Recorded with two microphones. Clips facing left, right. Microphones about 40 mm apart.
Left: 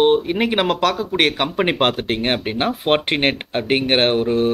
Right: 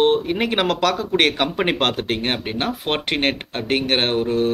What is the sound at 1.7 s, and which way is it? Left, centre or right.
Speech, centre.